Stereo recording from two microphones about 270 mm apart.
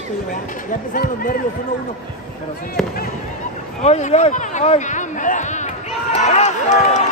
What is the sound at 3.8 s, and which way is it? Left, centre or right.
Speech, left.